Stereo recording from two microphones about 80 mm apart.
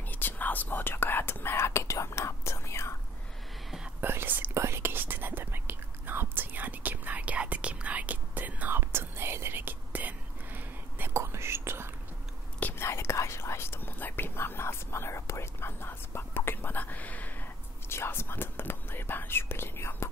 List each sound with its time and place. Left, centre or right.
0.1 s whispering: left
4.0 s whispering: right
11.1 s whispering: right
12.5 s whispering: centre
12.8 s whispering: left
17.8 s whispering: left